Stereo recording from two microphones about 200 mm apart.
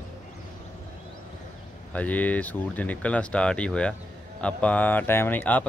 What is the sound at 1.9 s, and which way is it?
Speech, 5° left (ahead or behind).